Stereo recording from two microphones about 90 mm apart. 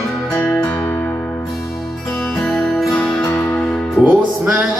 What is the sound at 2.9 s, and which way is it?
Music, 15° left (ahead or behind).